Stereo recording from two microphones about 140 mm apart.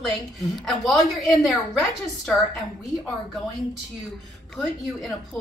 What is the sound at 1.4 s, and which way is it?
Speech, centre (ahead or behind).